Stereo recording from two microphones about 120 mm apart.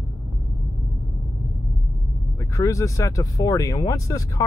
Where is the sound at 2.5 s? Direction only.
25° left (ahead or behind).